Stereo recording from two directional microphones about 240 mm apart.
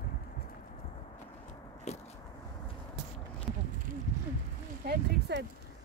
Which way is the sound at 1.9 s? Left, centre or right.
Left.